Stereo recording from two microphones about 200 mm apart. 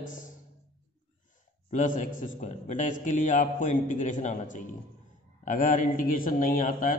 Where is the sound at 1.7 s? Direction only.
40° left (ahead or behind).